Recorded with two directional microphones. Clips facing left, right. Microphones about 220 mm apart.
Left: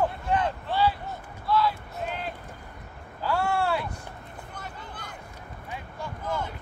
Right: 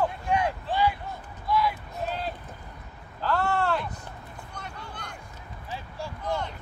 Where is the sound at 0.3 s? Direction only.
10° right (ahead or behind).